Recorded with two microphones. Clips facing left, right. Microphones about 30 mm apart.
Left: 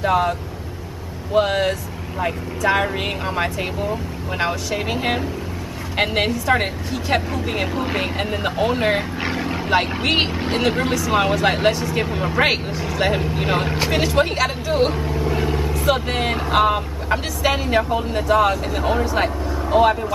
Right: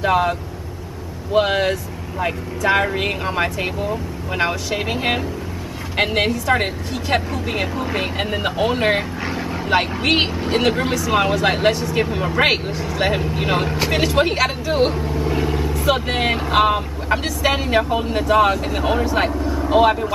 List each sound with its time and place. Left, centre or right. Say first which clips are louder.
0.0 s speech: right 1 dB; centre
7.7 s speech: even; centre
8.2 s speech: right 2 dB; centre
15.0 s vehicle: right 1 dB; centre
16.1 s speech: right 1 dB; centre